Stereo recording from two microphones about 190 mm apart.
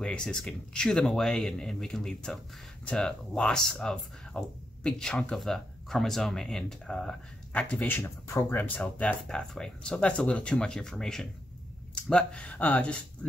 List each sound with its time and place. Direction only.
0.0 s speech: 5° left (ahead or behind)